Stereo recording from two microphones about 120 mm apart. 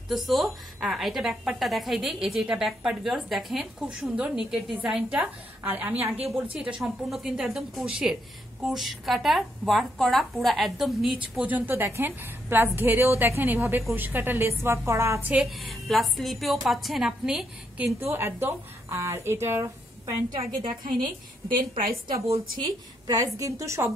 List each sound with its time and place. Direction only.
0.1 s a woman's voice: centre (ahead or behind)
11.3 s a woman's voice: 15° right (ahead or behind)
15.6 s a woman's voice: centre (ahead or behind)
18.0 s speech: 20° right (ahead or behind)
22.3 s speech: 30° right (ahead or behind)